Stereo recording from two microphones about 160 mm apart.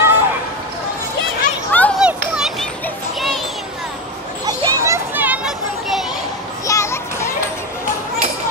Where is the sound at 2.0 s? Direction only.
5° right (ahead or behind).